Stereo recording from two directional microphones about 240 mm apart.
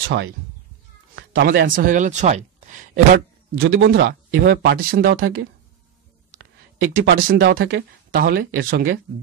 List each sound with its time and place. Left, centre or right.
1.1 s speech: right
3.5 s speech: right
7.0 s speech: right